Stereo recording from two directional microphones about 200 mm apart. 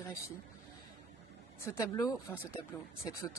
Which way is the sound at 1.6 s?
15° left (ahead or behind).